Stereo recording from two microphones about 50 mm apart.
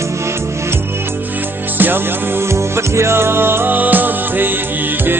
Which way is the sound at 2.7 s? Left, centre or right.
Right.